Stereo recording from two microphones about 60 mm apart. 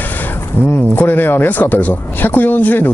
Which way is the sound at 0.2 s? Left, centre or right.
Left.